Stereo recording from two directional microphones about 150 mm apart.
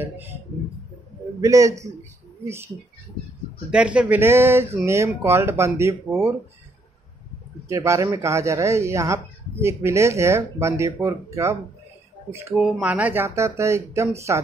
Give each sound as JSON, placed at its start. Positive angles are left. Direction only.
{"t": 0.0, "sound": "speech", "side_deg": -10}
{"t": 1.4, "sound": "speech", "side_deg": -20}
{"t": 3.7, "sound": "speech", "side_deg": -10}
{"t": 7.6, "sound": "speech", "side_deg": -20}
{"t": 12.6, "sound": "speech", "side_deg": -5}